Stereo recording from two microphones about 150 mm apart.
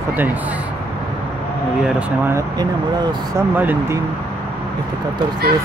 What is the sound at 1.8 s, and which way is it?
Speech, 10° right (ahead or behind).